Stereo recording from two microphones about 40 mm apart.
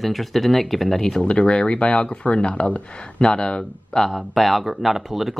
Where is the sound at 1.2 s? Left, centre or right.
Left.